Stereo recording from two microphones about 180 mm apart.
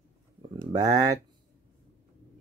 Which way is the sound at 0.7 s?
20° right (ahead or behind).